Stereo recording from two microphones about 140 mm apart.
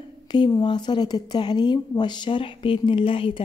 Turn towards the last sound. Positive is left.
turn(degrees=40)  # may be behind; listen again after turning